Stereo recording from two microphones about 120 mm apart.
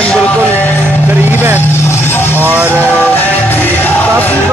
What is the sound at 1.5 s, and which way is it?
Vehicle, 20° left (ahead or behind).